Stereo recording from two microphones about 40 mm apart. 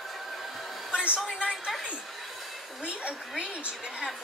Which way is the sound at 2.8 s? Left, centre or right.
Right.